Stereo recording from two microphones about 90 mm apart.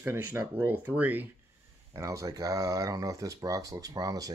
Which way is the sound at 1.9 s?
35° right (ahead or behind).